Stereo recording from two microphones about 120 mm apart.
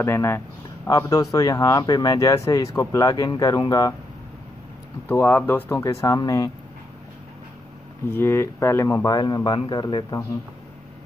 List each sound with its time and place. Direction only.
0.0 s speech: 20° left (ahead or behind)
5.0 s speech: 20° left (ahead or behind)
8.1 s speech: 20° left (ahead or behind); by 10.2 s 35° left (ahead or behind)